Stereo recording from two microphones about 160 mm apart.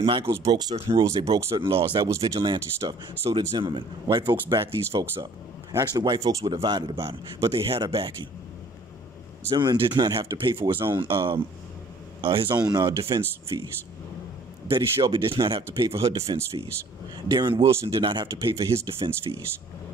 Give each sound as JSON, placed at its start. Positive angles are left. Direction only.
{"t": 0.0, "sound": "speech", "side_deg": -30}
{"t": 1.0, "sound": "speech", "side_deg": -20}
{"t": 7.5, "sound": "speech", "side_deg": -35}
{"t": 9.5, "sound": "speech", "side_deg": -25}
{"t": 12.2, "sound": "speech", "side_deg": -35}
{"t": 14.7, "sound": "speech", "side_deg": -30}